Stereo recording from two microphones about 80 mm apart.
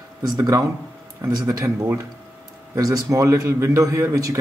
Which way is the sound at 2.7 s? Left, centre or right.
Right.